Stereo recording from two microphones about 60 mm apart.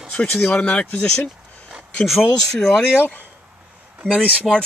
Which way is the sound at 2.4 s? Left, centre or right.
Centre.